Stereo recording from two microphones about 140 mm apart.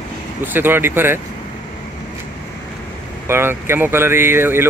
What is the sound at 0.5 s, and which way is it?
Speech, 15° right (ahead or behind).